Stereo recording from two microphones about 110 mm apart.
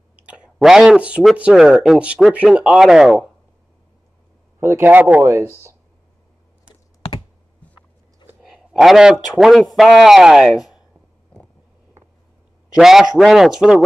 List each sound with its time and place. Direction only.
0.1 s clicking: 10° right (ahead or behind)
0.6 s a man's voice: centre (ahead or behind)
4.6 s speech: 25° right (ahead or behind)
8.4 s a man's voice: 5° right (ahead or behind)
12.7 s a man's voice: 5° right (ahead or behind)